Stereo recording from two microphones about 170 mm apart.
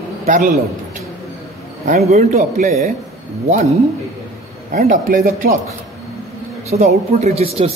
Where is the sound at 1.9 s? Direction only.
40° right (ahead or behind).